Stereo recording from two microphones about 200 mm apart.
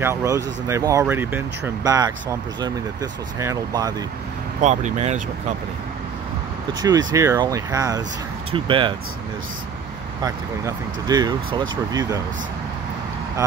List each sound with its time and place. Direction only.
0.0 s speech: 15° right (ahead or behind)
4.6 s speech: 35° right (ahead or behind)
6.8 s speech: 20° right (ahead or behind)
10.2 s speech: 20° right (ahead or behind)